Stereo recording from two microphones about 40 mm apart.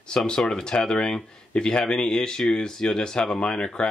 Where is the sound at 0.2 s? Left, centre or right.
Centre.